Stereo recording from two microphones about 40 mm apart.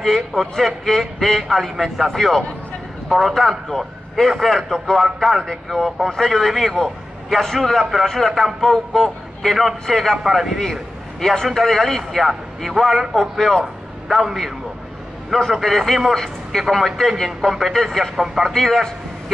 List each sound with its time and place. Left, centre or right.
0.0 s a man's voice: centre
10.6 s a man's voice: centre
15.5 s a man's voice: centre
18.1 s a man's voice: centre
18.5 s a man's voice: centre